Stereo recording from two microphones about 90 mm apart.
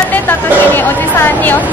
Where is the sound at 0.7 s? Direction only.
25° left (ahead or behind).